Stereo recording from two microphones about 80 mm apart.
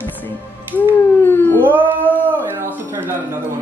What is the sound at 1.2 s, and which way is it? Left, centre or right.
Howl, left.